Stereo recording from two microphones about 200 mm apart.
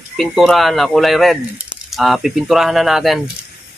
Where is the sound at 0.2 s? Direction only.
Centre (ahead or behind).